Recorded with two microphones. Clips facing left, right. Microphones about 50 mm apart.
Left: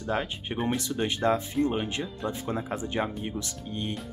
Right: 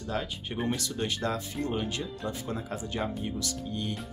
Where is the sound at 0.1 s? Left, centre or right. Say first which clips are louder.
Left 4 dB; left.